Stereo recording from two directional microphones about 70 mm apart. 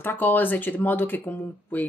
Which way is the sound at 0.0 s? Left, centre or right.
Left.